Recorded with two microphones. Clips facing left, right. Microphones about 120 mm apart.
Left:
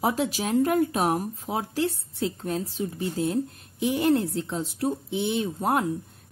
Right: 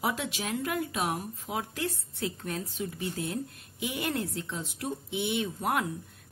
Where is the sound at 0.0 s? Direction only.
35° left (ahead or behind).